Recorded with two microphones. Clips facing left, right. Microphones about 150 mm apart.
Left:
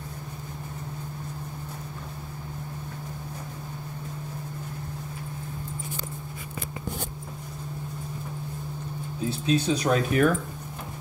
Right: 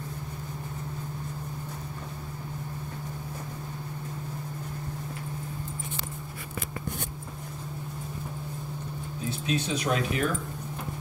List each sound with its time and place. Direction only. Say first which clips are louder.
9.5 s speech: left 5 dB; 40° left (ahead or behind)